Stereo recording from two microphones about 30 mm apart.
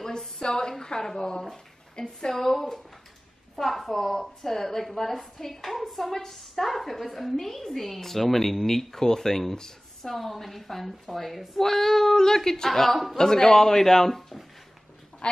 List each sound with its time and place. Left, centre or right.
0.4 s a woman's voice: left
9.6 s a sound: centre
10.1 s a woman's voice: centre
13.2 s a woman's voice: left